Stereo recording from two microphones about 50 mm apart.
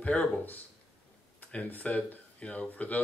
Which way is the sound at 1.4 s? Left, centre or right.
Left.